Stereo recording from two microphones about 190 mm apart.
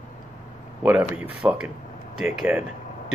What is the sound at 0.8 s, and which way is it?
Speech, 5° right (ahead or behind).